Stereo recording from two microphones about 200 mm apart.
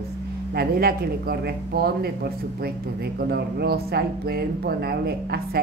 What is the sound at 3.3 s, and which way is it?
A woman's voice, 55° right (ahead or behind).